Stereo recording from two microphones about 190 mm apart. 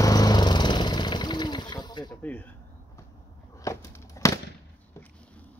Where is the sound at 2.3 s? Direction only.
5° left (ahead or behind).